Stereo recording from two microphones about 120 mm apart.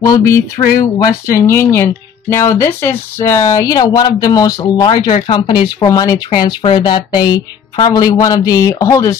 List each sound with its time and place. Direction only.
0.0 s speech: 25° left (ahead or behind)
5.9 s speech: 30° left (ahead or behind)